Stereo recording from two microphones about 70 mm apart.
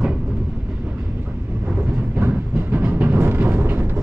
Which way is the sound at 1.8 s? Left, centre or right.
Right.